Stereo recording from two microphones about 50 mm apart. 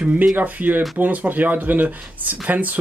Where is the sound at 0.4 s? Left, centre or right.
Right.